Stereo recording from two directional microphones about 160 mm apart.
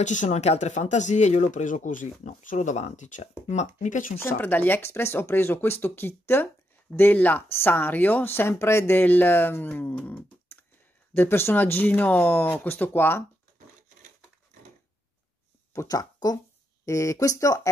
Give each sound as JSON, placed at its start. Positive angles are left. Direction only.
{"t": 0.0, "sound": "speech", "side_deg": 50}
{"t": 4.2, "sound": "speech", "side_deg": 15}
{"t": 15.7, "sound": "speech", "side_deg": 20}